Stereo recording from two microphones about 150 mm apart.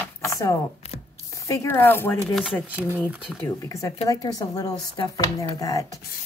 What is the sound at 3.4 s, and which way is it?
Speech, 20° left (ahead or behind).